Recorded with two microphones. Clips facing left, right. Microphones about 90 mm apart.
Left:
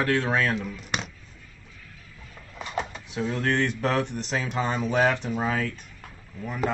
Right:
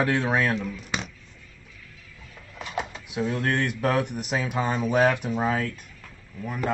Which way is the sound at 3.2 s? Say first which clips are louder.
Even; 5° right (ahead or behind).